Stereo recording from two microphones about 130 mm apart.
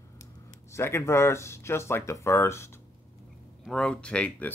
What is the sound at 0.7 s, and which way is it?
Speech, 20° left (ahead or behind).